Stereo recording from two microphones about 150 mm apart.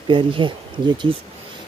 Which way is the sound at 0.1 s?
35° right (ahead or behind).